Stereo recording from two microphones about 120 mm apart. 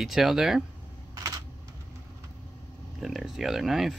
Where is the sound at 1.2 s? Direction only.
30° right (ahead or behind).